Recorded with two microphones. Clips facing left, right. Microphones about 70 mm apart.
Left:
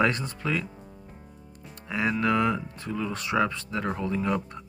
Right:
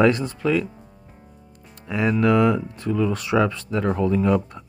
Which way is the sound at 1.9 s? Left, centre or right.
Left.